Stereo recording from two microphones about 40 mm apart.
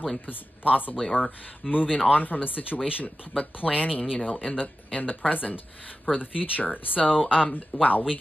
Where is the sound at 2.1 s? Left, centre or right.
Left.